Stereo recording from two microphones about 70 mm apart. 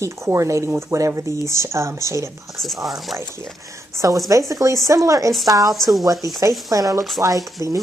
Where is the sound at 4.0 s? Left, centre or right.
Right.